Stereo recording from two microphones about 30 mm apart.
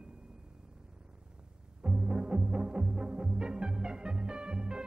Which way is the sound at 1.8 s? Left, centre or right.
Right.